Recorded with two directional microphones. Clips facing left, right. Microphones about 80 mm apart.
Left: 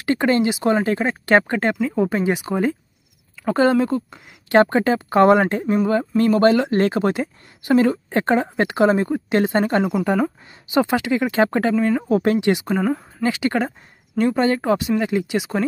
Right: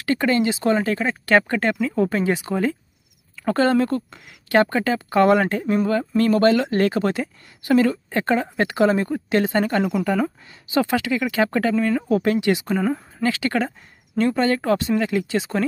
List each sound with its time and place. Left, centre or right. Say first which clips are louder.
0.0 s speech: left 2 dB; left